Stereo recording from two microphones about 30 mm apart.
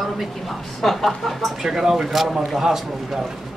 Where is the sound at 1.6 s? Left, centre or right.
Centre.